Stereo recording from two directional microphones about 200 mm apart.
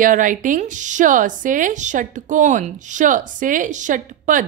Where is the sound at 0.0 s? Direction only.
40° right (ahead or behind).